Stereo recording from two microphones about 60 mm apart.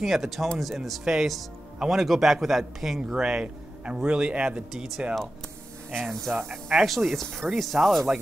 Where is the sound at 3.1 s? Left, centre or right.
Centre.